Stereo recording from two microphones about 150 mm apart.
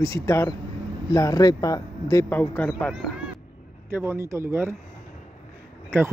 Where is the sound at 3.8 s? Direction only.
15° right (ahead or behind).